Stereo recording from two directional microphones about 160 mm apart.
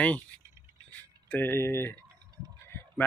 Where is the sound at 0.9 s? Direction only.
10° left (ahead or behind).